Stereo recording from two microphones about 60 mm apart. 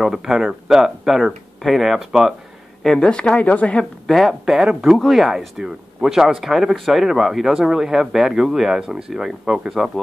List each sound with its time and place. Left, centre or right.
0.0 s speech: centre
2.8 s speech: centre
4.1 s speech: centre
4.5 s speech: centre